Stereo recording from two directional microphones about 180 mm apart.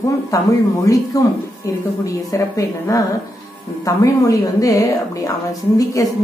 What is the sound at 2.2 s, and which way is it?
A woman's voice, 20° left (ahead or behind).